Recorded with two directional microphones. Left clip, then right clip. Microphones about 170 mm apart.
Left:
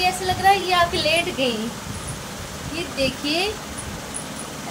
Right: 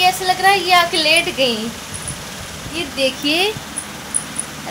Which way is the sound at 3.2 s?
35° right (ahead or behind).